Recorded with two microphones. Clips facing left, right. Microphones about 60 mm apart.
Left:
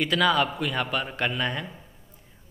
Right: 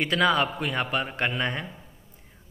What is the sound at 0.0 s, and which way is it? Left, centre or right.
A man's voice, right.